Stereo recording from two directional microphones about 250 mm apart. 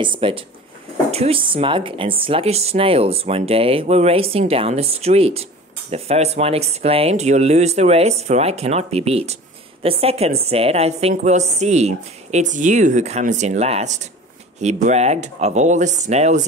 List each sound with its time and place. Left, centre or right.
0.0 s speech: centre